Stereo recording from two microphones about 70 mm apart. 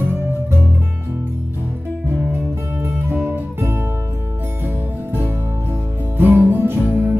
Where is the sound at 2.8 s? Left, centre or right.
Right.